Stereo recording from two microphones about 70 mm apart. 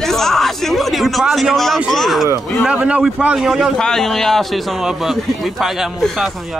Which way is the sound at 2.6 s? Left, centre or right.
Centre.